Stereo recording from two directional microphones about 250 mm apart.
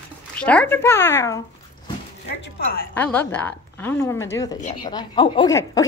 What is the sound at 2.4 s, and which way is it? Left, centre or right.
Speech, left.